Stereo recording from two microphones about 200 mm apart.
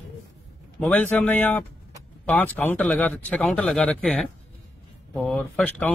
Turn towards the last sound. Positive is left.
turn(degrees=5)  # may be behind; listen again after turning